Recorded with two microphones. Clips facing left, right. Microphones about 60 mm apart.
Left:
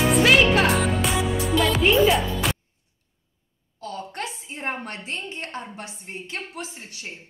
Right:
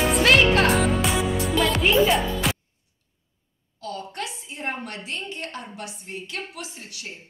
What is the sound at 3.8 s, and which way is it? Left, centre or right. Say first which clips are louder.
A woman's voice: even; left.